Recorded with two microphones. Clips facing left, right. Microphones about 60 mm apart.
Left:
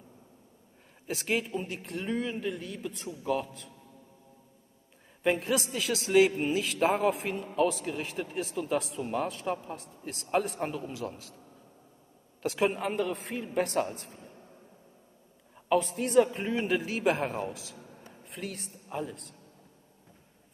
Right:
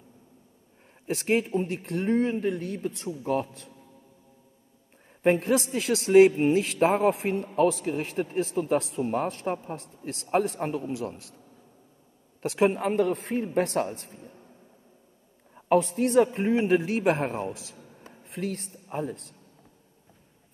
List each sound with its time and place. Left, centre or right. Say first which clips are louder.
1.0 s a man's voice: right 6 dB; right
5.2 s a man's voice: right 5 dB; right
12.4 s a man's voice: right 4 dB; right
15.5 s a woman's voice: right 4 dB; right
18.0 s a sound: right 7 dB; right